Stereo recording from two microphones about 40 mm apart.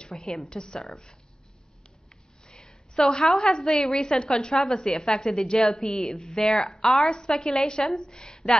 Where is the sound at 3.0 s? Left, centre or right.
Centre.